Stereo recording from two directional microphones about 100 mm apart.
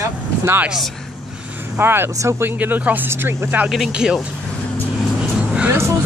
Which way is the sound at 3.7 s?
5° right (ahead or behind).